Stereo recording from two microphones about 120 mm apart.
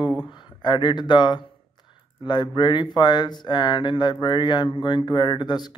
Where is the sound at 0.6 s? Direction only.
40° left (ahead or behind).